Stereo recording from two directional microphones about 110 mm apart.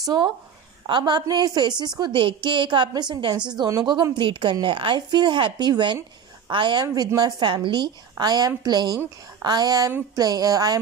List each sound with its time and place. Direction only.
0.0 s a woman's voice: 40° right (ahead or behind)